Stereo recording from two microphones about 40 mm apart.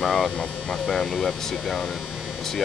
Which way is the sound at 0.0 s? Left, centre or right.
Centre.